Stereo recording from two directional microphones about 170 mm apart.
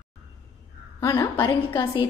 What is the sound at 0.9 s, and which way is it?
Speech, 20° left (ahead or behind).